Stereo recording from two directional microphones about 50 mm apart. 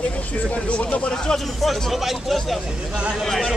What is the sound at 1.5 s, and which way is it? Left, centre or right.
Speech, centre.